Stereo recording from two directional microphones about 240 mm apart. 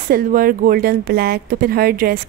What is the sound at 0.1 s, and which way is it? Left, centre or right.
A woman's voice, right.